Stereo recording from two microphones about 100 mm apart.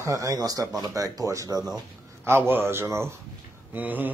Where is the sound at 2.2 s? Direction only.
20° right (ahead or behind).